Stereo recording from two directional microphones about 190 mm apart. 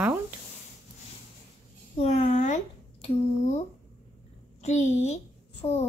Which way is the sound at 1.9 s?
35° left (ahead or behind).